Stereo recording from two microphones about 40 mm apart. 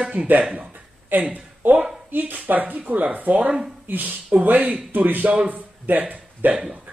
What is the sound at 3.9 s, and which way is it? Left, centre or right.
A man's voice, right.